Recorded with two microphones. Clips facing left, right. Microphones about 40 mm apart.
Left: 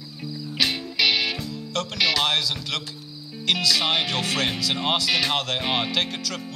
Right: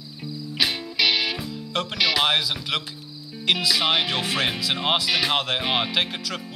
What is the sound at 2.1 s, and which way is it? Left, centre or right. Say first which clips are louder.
Speech: right 2 dB; centre.